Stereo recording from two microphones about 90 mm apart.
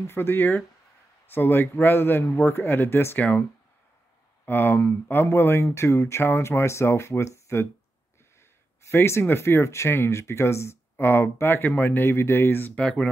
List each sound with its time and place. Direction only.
0.0 s speech: 25° left (ahead or behind)
4.5 s speech: 25° left (ahead or behind)
8.8 s speech: 30° left (ahead or behind); by 13.1 s 10° left (ahead or behind)